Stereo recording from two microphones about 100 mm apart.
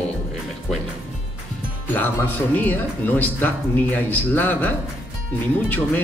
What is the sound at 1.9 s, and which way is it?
Speech, 20° left (ahead or behind).